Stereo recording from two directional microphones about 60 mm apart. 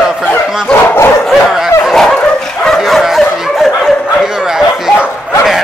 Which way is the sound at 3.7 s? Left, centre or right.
Centre.